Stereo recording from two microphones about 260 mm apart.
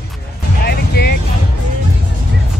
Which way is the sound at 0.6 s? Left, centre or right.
Left.